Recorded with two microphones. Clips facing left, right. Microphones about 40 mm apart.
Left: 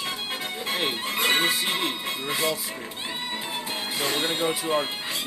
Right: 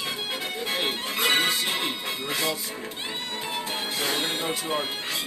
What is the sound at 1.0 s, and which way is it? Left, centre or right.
Music, left.